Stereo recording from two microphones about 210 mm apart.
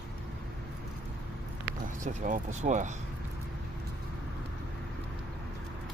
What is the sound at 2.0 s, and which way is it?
Speech, 35° right (ahead or behind).